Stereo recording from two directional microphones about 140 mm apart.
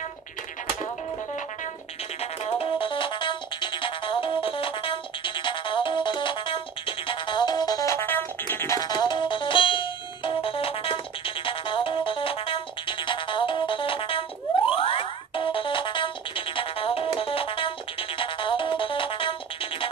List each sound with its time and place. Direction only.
2.4 s music: 40° left (ahead or behind); by 8.7 s 15° left (ahead or behind)
8.7 s music: 30° left (ahead or behind)